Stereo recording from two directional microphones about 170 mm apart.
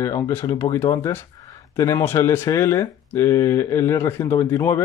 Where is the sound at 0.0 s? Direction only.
15° left (ahead or behind).